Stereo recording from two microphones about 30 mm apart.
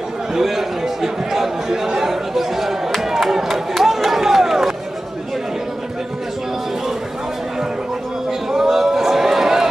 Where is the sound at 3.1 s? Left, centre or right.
Centre.